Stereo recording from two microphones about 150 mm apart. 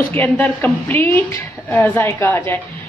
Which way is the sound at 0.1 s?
10° left (ahead or behind).